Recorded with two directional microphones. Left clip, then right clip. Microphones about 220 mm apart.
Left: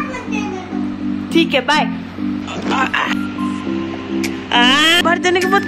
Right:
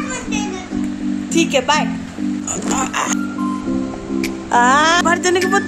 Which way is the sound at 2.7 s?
20° right (ahead or behind).